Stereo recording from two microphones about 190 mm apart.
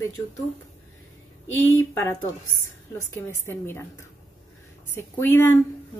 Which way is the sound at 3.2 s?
10° left (ahead or behind).